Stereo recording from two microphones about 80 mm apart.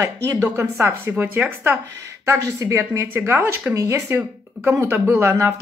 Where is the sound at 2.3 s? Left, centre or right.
Right.